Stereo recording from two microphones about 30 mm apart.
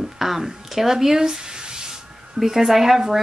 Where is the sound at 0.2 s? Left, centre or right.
Centre.